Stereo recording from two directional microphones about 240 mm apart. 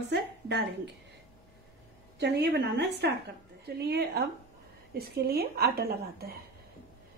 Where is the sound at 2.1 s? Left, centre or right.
Right.